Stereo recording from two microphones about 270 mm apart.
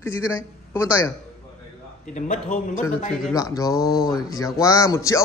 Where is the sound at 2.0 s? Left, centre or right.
Left.